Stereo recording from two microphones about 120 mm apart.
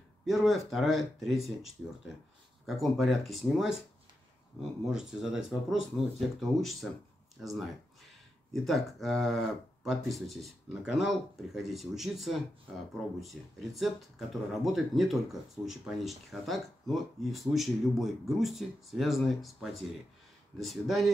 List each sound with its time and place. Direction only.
0.2 s speech: centre (ahead or behind)
4.8 s speech: 5° right (ahead or behind)